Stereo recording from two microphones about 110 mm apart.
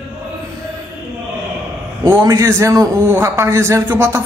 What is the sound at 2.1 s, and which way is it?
A man's voice, 30° right (ahead or behind).